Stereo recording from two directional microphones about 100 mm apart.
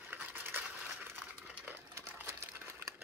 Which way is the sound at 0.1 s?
20° right (ahead or behind).